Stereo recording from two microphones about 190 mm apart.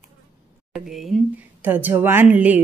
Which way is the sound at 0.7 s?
Centre (ahead or behind).